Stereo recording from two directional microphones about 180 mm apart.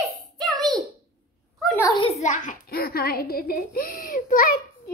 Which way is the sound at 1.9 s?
25° left (ahead or behind).